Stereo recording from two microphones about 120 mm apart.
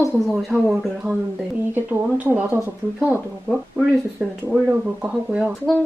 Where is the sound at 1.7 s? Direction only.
15° right (ahead or behind).